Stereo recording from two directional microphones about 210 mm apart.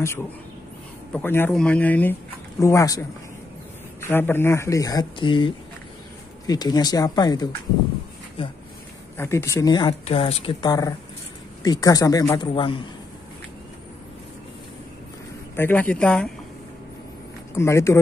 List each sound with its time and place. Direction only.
1.1 s speech: 10° left (ahead or behind)
9.1 s speech: 10° left (ahead or behind)
15.5 s speech: 10° left (ahead or behind)
17.6 s speech: 15° left (ahead or behind)